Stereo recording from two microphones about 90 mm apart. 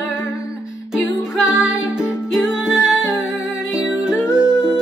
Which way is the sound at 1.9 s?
5° right (ahead or behind).